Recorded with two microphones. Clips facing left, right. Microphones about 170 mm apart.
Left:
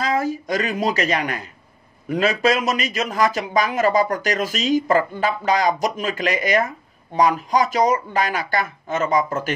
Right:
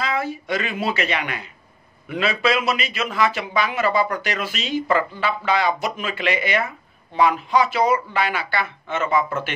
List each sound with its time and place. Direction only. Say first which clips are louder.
0.0 s a woman's voice: left 3 dB; 40° left (ahead or behind)